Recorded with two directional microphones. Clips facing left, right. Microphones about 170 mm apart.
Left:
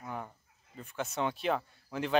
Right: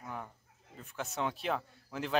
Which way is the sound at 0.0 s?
Centre (ahead or behind).